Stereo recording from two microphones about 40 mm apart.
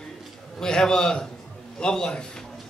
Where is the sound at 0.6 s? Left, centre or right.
Centre.